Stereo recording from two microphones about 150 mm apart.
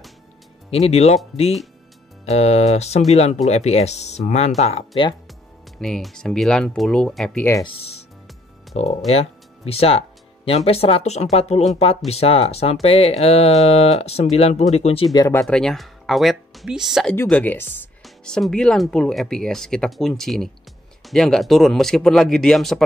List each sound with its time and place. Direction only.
0.7 s speech: 45° left (ahead or behind)
5.8 s speech: centre (ahead or behind)
9.1 s speech: 40° left (ahead or behind)
15.1 s speech: 20° left (ahead or behind)
15.4 s speech: centre (ahead or behind)
17.1 s speech: 10° left (ahead or behind)